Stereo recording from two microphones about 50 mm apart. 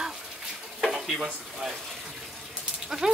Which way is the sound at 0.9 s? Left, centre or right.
Centre.